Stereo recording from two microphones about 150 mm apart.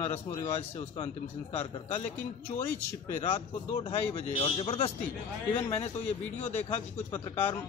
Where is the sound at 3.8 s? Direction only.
40° left (ahead or behind).